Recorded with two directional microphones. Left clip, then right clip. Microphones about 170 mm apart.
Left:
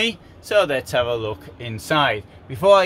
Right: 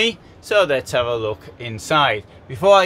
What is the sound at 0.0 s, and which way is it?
Speech, centre (ahead or behind).